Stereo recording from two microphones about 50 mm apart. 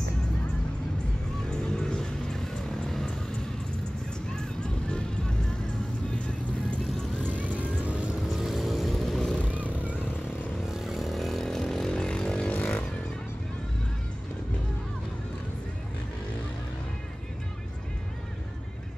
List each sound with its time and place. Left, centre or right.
1.5 s vehicle: centre
4.3 s music: centre
7.3 s vehicle: right
8.2 s vehicle: centre
9.6 s vehicle: right
10.7 s vehicle: centre